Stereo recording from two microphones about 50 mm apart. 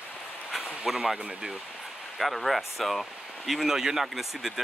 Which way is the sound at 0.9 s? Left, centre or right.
Centre.